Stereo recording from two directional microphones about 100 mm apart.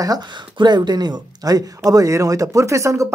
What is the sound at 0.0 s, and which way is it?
Speech, 45° right (ahead or behind).